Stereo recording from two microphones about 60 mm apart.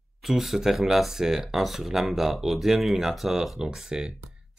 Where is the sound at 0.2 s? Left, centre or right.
Centre.